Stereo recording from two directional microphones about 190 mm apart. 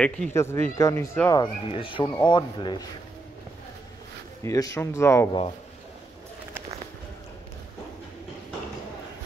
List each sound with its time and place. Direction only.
0.0 s speech: 10° left (ahead or behind)
1.4 s speech: 25° left (ahead or behind)
4.4 s speech: 15° left (ahead or behind)